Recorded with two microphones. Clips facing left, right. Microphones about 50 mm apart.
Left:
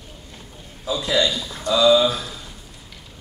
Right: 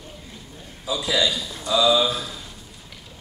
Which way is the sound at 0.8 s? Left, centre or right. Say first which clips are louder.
Left 2 dB; left.